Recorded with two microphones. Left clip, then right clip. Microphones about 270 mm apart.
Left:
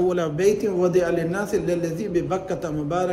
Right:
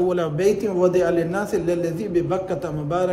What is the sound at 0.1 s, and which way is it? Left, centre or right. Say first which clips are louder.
A man's voice: right 1 dB; centre.